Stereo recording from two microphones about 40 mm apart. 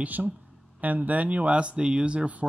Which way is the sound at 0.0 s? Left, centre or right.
Right.